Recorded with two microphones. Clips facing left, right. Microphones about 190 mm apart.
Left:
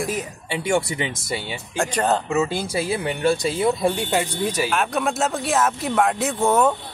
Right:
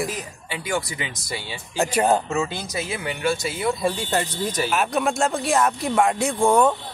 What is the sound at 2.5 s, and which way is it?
Speech, 30° left (ahead or behind).